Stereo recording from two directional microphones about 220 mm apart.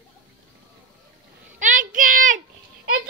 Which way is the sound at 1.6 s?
35° right (ahead or behind).